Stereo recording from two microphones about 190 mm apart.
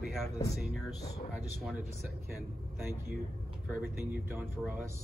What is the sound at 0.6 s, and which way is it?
Speech, centre (ahead or behind).